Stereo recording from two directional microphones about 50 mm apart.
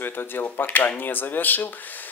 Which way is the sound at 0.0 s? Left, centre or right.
Left.